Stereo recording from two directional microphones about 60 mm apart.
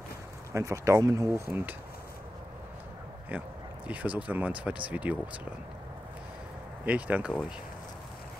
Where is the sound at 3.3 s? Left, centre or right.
Right.